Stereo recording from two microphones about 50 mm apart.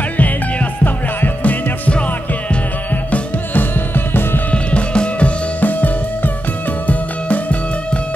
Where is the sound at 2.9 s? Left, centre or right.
Left.